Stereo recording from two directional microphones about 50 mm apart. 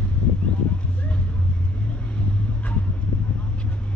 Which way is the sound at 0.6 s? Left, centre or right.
Left.